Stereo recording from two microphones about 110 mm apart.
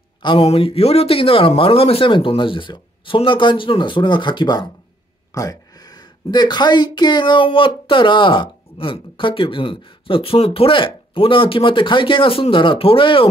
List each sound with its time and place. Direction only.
0.4 s speech: 65° left (ahead or behind); by 4.6 s 40° left (ahead or behind)
5.3 s speech: 30° left (ahead or behind); by 13.3 s 55° left (ahead or behind)